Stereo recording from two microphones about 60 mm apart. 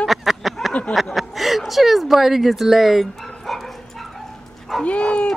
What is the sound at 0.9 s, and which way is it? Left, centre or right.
Speech, centre.